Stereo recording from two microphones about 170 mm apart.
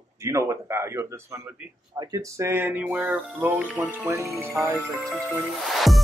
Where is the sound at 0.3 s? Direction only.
15° right (ahead or behind).